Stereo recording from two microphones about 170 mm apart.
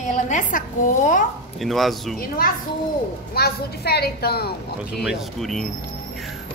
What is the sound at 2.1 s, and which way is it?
A child's voice, 60° left (ahead or behind).